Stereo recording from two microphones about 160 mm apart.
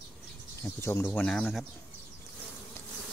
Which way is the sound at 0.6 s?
15° left (ahead or behind).